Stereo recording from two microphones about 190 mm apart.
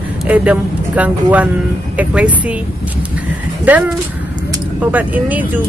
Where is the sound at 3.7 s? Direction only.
10° right (ahead or behind).